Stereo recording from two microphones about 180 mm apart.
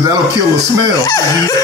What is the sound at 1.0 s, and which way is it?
Speech, 20° left (ahead or behind).